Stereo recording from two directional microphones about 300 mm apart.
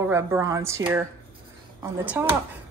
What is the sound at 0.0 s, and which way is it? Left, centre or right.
Speech, centre.